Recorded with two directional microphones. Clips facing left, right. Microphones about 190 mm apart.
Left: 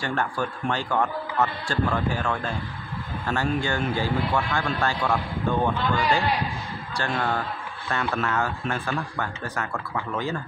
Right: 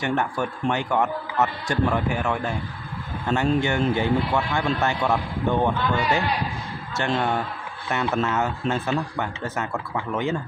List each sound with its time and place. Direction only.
0.0 s a man's voice: 20° right (ahead or behind)